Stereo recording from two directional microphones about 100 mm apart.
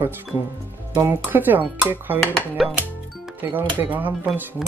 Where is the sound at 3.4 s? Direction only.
20° right (ahead or behind).